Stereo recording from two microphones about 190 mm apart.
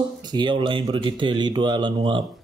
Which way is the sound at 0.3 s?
25° right (ahead or behind).